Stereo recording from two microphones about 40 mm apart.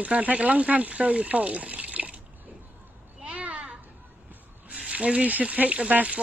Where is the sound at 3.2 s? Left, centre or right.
Right.